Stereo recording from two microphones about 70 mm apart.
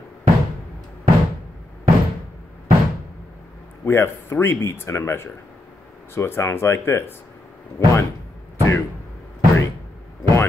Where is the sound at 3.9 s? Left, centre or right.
Left.